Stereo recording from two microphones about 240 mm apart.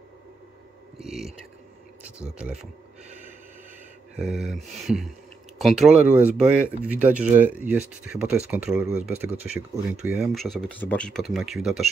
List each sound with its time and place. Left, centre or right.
1.0 s speech: centre
2.3 s speech: centre
4.2 s speech: centre
5.9 s speech: right
6.3 s speech: centre